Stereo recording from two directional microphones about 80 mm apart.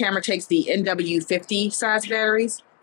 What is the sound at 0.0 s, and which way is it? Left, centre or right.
Speech, centre.